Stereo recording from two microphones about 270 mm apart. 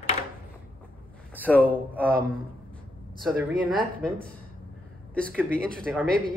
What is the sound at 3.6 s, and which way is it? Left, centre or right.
Speech, centre.